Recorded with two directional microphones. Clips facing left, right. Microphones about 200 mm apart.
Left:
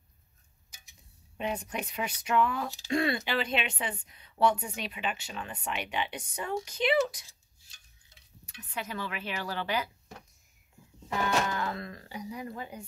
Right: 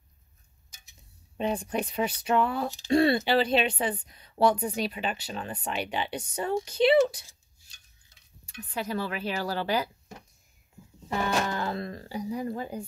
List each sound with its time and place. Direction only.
1.4 s speech: 30° right (ahead or behind)
8.5 s speech: 35° right (ahead or behind)
11.1 s speech: 35° right (ahead or behind)